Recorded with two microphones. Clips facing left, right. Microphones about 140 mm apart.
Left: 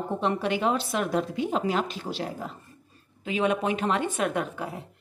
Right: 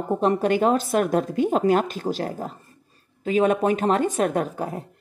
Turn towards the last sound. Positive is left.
turn(degrees=-40)  # may be behind; listen again after turning